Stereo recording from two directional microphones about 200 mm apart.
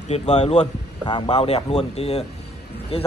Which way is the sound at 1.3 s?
30° left (ahead or behind).